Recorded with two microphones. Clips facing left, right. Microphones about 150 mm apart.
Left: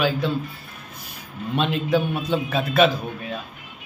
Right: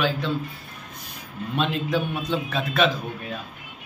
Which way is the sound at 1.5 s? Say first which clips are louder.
Left 3 dB; 5° left (ahead or behind).